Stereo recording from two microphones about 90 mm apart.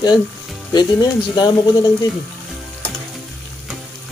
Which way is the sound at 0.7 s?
50° left (ahead or behind).